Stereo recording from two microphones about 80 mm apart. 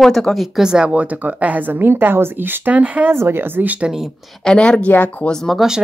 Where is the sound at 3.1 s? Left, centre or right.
Right.